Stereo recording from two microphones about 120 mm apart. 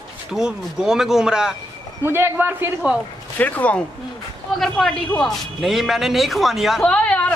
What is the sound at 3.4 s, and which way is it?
Speech, 15° left (ahead or behind).